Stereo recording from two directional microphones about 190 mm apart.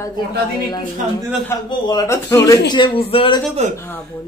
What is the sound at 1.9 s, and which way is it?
Speech, 15° left (ahead or behind).